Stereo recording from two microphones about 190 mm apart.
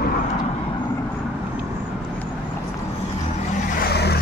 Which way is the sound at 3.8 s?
55° left (ahead or behind).